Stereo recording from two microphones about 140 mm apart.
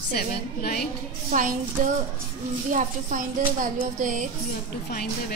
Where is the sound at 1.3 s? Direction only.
60° right (ahead or behind).